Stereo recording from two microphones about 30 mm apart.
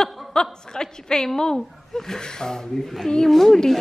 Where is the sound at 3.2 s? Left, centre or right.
Centre.